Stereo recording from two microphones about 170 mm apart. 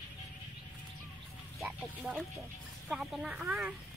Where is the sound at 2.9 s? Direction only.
Centre (ahead or behind).